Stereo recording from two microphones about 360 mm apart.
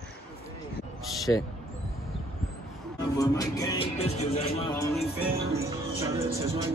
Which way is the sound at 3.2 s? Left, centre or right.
Centre.